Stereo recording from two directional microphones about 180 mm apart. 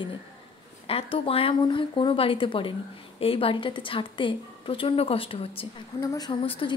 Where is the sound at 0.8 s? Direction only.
30° left (ahead or behind).